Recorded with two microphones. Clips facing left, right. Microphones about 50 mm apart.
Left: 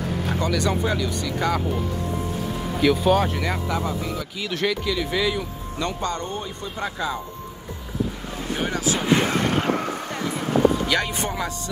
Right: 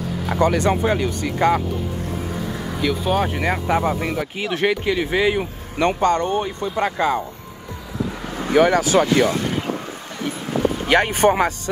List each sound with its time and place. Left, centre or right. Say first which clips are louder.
0.3 s speech: right 7 dB; right
2.8 s speech: left 3 dB; centre
3.2 s speech: right 3 dB; right
3.6 s speech: right 6 dB; right
4.4 s speech: right 4 dB; right
8.5 s speech: right 12 dB; right
9.1 s speech: right 3 dB; left
9.5 s vehicle: left 2 dB; left
10.9 s speech: right 8 dB; right